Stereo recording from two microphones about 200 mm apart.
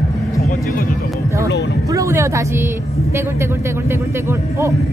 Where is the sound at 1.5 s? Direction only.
60° left (ahead or behind).